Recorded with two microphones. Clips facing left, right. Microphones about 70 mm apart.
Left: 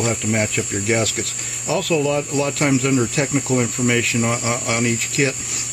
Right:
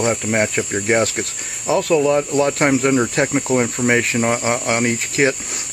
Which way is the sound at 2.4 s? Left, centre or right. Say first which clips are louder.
Right 3 dB; right.